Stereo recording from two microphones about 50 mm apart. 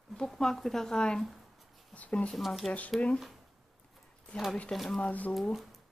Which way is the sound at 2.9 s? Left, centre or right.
Left.